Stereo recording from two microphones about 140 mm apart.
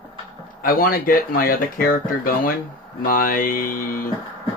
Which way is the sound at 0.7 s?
90° left.